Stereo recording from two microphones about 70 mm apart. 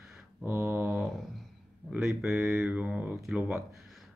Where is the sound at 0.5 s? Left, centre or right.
Right.